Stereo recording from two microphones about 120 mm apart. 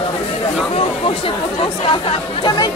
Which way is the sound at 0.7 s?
50° left (ahead or behind).